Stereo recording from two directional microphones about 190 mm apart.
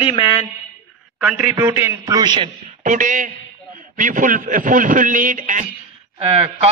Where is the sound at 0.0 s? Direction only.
30° left (ahead or behind).